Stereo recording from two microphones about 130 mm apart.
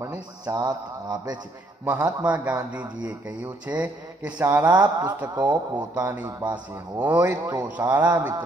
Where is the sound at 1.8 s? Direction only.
10° right (ahead or behind).